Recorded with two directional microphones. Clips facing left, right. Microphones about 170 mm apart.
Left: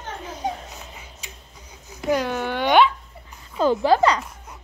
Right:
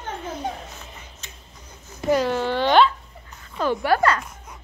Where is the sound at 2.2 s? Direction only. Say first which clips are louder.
Right 2 dB; 15° left (ahead or behind).